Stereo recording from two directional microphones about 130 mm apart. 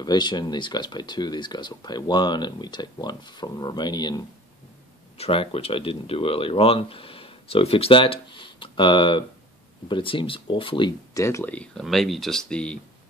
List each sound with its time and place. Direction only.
0.0 s speech: 35° left (ahead or behind)
5.1 s speech: 45° left (ahead or behind)
11.1 s speech: 20° left (ahead or behind)
11.5 s speech: 10° left (ahead or behind)